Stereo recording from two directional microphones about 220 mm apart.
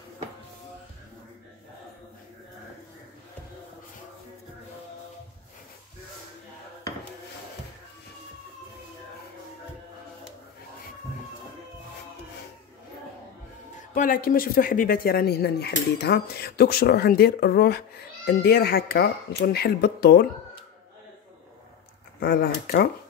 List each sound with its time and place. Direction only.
13.9 s speech: 40° left (ahead or behind)
22.2 s speech: 45° left (ahead or behind)